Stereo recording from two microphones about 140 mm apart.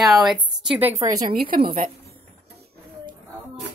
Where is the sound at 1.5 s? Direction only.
90° right.